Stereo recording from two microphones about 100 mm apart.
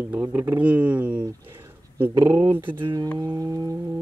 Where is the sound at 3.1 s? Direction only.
40° right (ahead or behind).